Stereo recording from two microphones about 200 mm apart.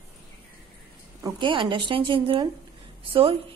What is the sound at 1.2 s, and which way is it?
Speech, 25° right (ahead or behind).